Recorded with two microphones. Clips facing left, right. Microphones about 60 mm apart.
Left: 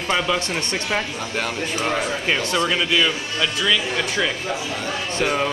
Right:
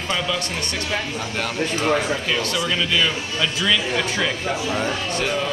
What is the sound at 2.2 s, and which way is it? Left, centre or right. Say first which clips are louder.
Speech: left 2 dB; left.